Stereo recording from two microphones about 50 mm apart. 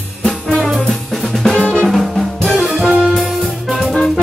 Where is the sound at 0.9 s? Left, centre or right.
Centre.